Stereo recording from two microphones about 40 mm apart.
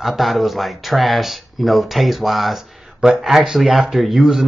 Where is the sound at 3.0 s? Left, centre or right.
Centre.